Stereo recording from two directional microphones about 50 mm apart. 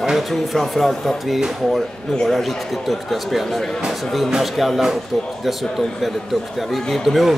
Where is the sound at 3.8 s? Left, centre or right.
Centre.